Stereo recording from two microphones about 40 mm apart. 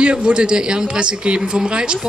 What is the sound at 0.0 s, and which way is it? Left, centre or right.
A man's voice, right.